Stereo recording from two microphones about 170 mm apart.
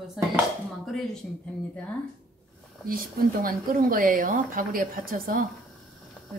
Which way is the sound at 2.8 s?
55° right (ahead or behind).